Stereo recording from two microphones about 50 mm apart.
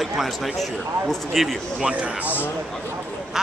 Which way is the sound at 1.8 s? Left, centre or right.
Right.